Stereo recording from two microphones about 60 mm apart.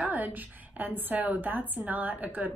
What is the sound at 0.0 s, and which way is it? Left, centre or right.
A woman's voice, right.